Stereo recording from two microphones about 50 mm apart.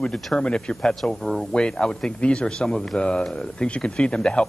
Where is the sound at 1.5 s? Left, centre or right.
Centre.